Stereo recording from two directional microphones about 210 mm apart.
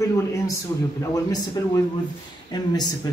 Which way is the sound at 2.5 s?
20° left (ahead or behind).